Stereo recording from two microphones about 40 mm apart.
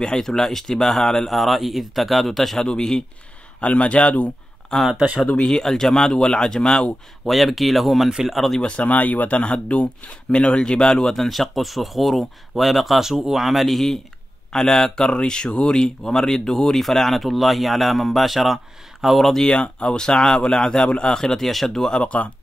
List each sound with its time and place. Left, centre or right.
0.0 s speech: centre
3.6 s speech: left
4.7 s speech: centre
5.2 s speech: left
5.5 s speech: centre
7.2 s speech: centre
8.5 s speech: left
9.4 s speech: left; by 13.9 s centre
14.5 s speech: centre
19.3 s speech: left
21.5 s speech: centre
22.0 s speech: left